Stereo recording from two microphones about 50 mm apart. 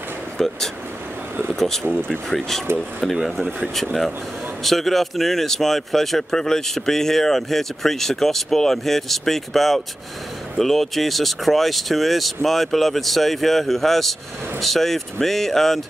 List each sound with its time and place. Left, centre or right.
0.4 s speech: centre
1.5 s a sound: centre
2.0 s speech: centre
3.4 s speech: right
4.6 s speech: centre